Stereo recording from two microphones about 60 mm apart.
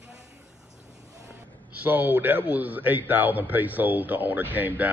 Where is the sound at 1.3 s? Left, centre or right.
Right.